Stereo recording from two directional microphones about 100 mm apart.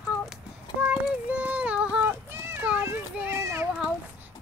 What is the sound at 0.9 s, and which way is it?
Child singing, 15° right (ahead or behind).